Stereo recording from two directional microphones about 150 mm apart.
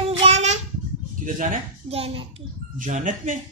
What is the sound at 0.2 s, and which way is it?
Babbling, 45° right (ahead or behind).